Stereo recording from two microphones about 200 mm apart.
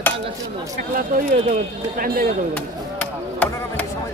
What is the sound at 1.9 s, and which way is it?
Speech, 45° right (ahead or behind).